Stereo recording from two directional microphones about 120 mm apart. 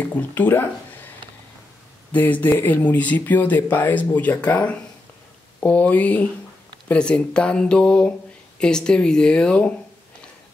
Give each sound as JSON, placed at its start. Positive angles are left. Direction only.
{"t": 0.2, "sound": "speech", "side_deg": 15}
{"t": 2.1, "sound": "speech", "side_deg": 15}